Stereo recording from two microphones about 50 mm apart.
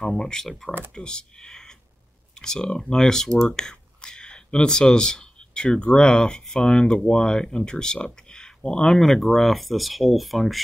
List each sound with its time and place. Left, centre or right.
0.2 s speech: centre